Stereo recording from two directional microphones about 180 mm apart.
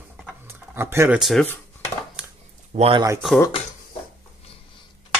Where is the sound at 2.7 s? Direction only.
35° right (ahead or behind).